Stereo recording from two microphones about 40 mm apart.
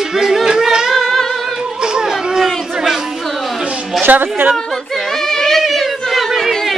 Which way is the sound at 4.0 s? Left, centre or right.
Right.